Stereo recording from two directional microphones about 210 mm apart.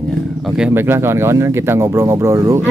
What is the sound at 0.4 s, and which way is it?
Speech, centre (ahead or behind).